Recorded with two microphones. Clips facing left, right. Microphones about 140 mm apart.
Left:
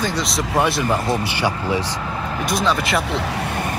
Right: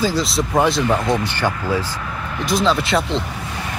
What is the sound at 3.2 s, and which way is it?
Vehicle, 80° left.